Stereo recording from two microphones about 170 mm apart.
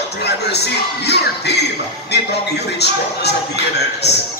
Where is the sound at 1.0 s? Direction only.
75° left (ahead or behind).